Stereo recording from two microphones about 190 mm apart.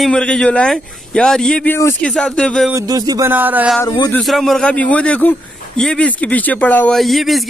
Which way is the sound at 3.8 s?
20° left (ahead or behind).